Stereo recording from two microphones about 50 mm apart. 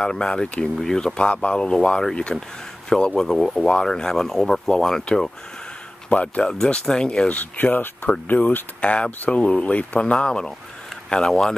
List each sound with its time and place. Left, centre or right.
0.0 s speech: centre
6.0 s speech: left
7.2 s speech: left; by 11.5 s centre